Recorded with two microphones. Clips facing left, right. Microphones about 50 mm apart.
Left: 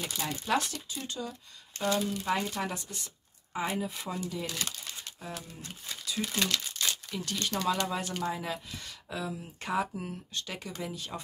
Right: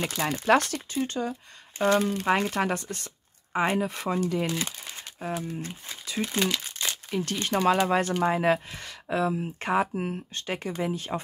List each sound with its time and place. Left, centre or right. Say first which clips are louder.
0.0 s speech: right 8 dB; right
1.0 s speech: right 8 dB; right
4.5 s crumpling: right 6 dB; right
4.9 s a sound: right 8 dB; right
6.0 s speech: right 5 dB; right
6.6 s crumpling: right 1 dB; right
7.8 s speech: right 9 dB; right